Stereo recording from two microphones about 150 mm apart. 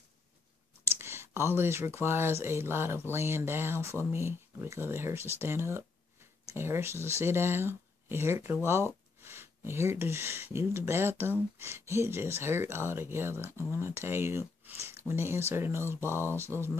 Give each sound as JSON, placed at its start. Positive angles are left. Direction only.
{"t": 0.8, "sound": "speech", "side_deg": -15}